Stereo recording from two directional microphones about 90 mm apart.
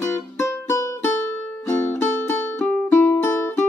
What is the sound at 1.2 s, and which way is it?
Music, 15° left (ahead or behind).